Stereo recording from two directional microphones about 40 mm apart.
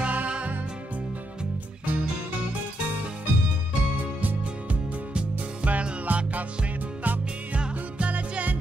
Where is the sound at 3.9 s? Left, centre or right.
Right.